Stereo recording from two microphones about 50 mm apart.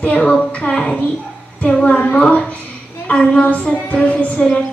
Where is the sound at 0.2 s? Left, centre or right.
Centre.